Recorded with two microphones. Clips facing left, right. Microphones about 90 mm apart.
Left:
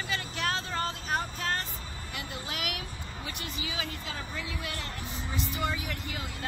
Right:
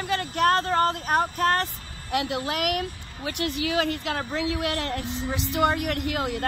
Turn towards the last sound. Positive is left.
turn(degrees=-60)  # may be behind; listen again after turning